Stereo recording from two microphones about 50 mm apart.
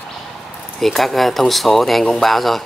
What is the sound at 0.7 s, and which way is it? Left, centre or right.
Speech, centre.